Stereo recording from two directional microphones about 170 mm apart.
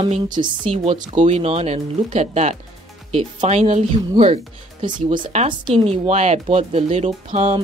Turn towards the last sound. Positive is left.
turn(degrees=-40)  # may be behind; listen again after turning